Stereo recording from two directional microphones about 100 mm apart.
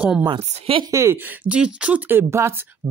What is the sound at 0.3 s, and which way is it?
Speech, 60° right (ahead or behind).